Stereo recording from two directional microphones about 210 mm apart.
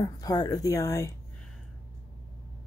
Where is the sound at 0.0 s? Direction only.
20° left (ahead or behind).